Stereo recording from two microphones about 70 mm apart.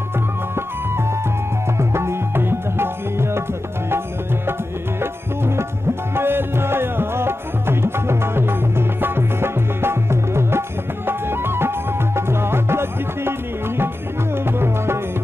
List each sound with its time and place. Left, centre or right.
1.8 s tabla: right
5.0 s music: right
14.3 s music: right